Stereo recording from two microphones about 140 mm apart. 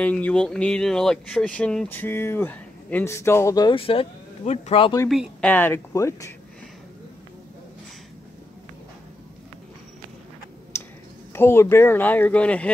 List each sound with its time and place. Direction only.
0.0 s speech: 10° left (ahead or behind)
3.7 s speech: 40° left (ahead or behind)
5.4 s speech: 15° left (ahead or behind)
10.7 s a sound: 20° left (ahead or behind)
11.3 s speech: 15° left (ahead or behind)